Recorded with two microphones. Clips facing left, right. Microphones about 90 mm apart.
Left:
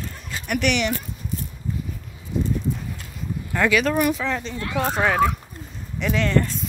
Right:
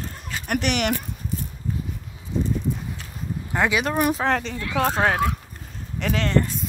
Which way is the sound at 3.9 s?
35° right (ahead or behind).